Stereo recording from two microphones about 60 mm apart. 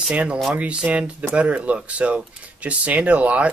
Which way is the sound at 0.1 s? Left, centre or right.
Centre.